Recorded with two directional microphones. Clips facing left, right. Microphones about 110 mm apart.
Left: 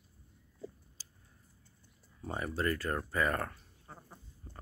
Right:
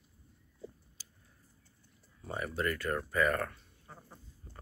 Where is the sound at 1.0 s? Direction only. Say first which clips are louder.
Even; 35° left (ahead or behind).